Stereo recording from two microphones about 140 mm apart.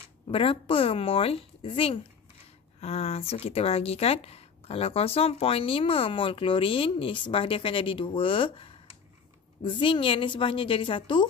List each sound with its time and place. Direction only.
0.3 s speech: 40° left (ahead or behind)